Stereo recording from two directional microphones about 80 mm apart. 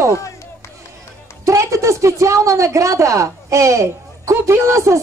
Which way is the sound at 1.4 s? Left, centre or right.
Right.